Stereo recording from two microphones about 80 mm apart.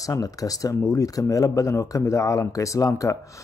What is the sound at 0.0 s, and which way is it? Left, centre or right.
Speech, left.